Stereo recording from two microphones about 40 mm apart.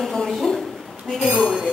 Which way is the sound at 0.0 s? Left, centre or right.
Centre.